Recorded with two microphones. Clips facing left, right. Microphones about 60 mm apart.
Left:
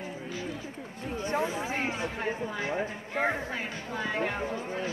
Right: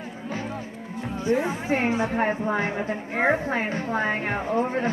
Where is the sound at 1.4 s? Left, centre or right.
Right.